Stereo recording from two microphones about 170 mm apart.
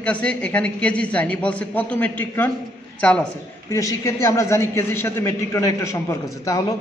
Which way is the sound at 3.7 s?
20° left (ahead or behind).